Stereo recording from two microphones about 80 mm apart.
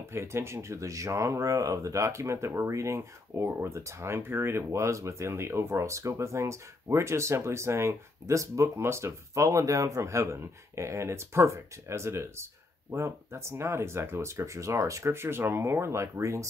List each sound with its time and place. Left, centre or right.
0.1 s speech: right